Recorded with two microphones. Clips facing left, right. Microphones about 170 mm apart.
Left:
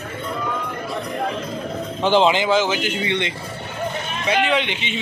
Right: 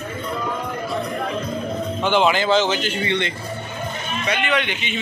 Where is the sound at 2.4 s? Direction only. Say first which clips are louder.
Even; 10° left (ahead or behind).